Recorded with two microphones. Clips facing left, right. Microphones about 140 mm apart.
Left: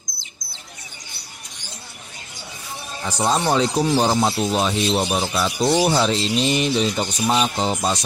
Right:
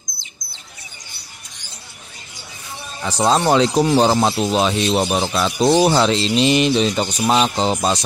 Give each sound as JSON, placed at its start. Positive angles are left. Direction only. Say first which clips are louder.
{"t": 3.1, "sound": "speech", "louder": "right 4 dB", "side_deg": -85}